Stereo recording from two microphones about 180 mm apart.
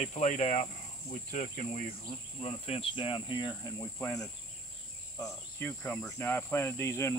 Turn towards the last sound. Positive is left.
turn(degrees=15)  # may be behind; listen again after turning